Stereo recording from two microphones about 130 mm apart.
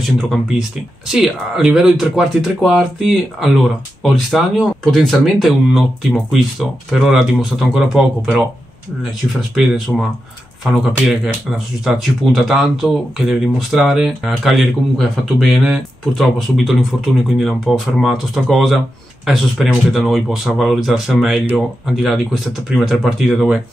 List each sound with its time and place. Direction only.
0.0 s speech: centre (ahead or behind)
9.9 s speech: centre (ahead or behind)